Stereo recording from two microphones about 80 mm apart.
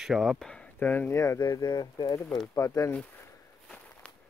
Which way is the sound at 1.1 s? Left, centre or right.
Left.